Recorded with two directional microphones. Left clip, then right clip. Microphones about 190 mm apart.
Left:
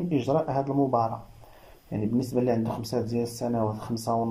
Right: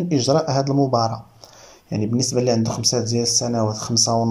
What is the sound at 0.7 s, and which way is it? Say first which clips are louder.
Speech: right 5 dB; 20° right (ahead or behind).